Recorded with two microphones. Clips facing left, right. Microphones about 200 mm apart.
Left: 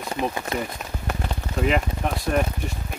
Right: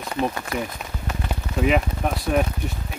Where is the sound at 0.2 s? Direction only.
20° left (ahead or behind).